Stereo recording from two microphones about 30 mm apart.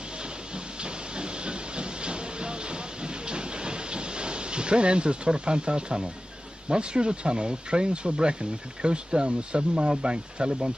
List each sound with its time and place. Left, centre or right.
0.8 s hiss: right
6.7 s speech: right